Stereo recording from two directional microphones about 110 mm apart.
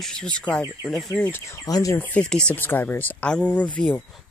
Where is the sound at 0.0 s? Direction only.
10° left (ahead or behind).